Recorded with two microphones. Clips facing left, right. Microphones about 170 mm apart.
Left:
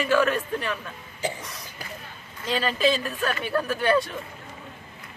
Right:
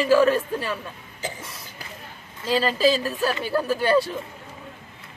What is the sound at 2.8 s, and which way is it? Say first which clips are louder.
Speech: right 3 dB; 30° right (ahead or behind).